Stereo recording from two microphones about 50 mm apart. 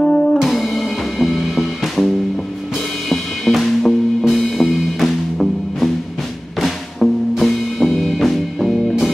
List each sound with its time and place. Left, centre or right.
0.0 s music: centre
0.4 s music: centre